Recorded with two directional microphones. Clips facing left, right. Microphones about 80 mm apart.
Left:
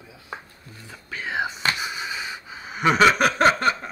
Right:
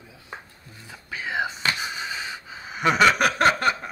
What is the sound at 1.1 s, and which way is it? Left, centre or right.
Speech, centre.